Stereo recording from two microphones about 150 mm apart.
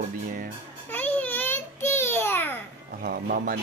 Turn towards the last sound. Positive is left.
turn(degrees=-75)  # may be behind; listen again after turning